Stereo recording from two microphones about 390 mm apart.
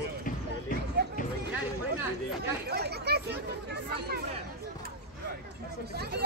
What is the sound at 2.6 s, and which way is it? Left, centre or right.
Chatter, right.